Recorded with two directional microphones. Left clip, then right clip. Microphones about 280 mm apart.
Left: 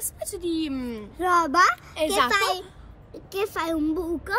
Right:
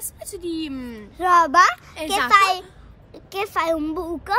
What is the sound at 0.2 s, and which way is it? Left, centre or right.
Speech, centre.